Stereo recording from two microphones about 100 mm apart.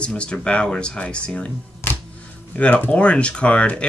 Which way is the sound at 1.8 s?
25° left (ahead or behind).